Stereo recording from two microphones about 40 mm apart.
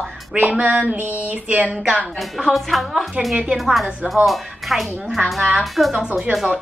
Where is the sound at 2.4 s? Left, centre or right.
Centre.